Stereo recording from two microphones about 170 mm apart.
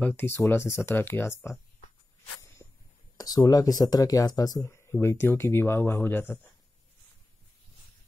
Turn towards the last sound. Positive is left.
turn(degrees=10)  # may be behind; listen again after turning